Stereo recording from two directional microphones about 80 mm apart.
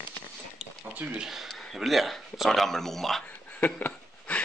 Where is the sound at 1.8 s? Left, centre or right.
Centre.